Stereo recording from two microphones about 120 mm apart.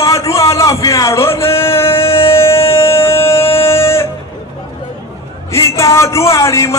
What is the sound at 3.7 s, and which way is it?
Music, 20° left (ahead or behind).